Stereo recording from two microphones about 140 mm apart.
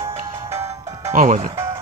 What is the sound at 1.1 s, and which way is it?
Speech, 65° right (ahead or behind).